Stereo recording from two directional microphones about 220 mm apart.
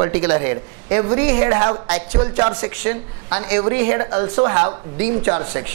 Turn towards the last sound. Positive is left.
turn(degrees=-15)  # may be behind; listen again after turning